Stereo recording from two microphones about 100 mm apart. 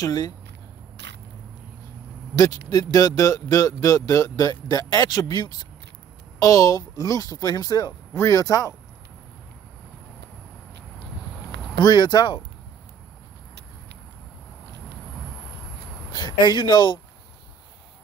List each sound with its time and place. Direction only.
0.0 s speech: 40° left (ahead or behind)
2.3 s speech: 35° left (ahead or behind)
11.8 s speech: 45° left (ahead or behind)
16.1 s speech: 45° left (ahead or behind)